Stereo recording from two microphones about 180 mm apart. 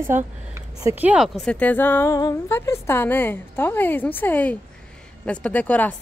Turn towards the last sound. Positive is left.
turn(degrees=10)  # may be behind; listen again after turning